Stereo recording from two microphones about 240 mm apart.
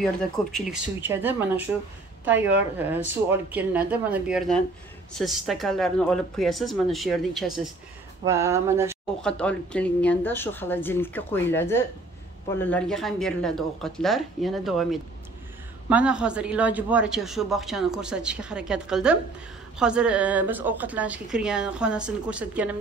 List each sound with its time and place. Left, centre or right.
0.0 s speech: centre
2.3 s speech: right
3.5 s speech: centre
9.2 s speech: centre